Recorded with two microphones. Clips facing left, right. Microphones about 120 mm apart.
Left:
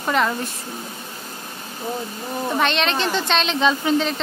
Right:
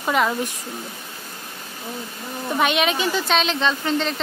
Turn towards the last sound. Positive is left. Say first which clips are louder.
# left 3 dB
turn(degrees=0)  # may be behind; listen again after turning